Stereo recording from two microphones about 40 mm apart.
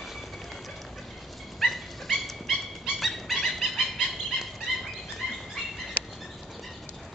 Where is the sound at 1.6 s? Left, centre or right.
Centre.